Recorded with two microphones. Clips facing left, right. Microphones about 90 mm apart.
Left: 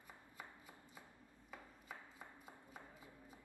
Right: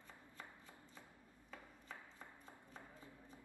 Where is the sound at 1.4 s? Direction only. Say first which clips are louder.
Left 1 dB; 10° left (ahead or behind).